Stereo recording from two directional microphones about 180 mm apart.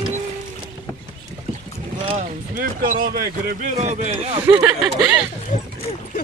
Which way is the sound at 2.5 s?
50° right (ahead or behind).